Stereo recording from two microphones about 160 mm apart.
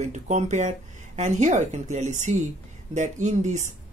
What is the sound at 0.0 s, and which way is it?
Speech, 45° right (ahead or behind).